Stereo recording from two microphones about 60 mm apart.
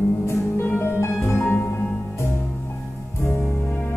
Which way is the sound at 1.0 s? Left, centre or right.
Left.